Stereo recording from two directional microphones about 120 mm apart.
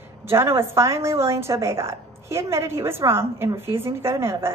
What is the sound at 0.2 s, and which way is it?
A woman's voice, 20° right (ahead or behind).